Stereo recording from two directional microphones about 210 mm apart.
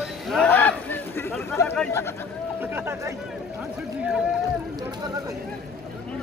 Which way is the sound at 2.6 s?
10° right (ahead or behind).